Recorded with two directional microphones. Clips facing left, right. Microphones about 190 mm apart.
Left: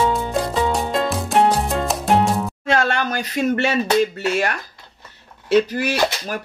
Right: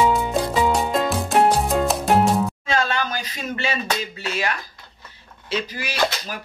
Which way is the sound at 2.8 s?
60° left (ahead or behind).